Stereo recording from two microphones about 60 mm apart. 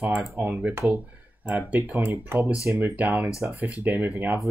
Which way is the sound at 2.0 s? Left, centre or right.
Right.